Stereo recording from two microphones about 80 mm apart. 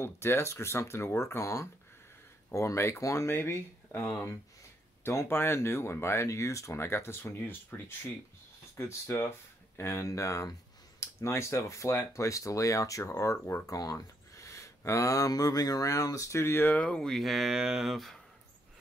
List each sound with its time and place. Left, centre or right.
0.0 s speech: left
16.7 s speech: centre